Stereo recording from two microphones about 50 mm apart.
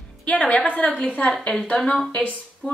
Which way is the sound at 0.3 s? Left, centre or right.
Left.